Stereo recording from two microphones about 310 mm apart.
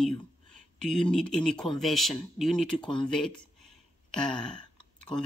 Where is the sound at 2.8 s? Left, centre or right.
Centre.